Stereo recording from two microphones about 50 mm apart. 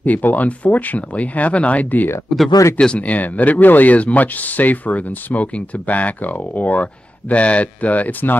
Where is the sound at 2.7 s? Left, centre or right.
Left.